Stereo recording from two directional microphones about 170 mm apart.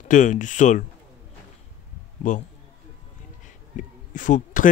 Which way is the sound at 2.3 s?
50° left (ahead or behind).